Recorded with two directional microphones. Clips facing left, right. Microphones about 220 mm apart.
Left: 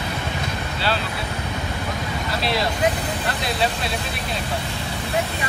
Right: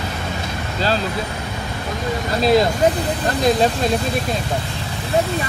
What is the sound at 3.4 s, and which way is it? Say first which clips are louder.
Speech: right 9 dB; 45° right (ahead or behind).